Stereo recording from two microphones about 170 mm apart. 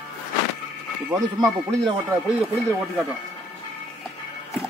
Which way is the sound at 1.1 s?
20° right (ahead or behind).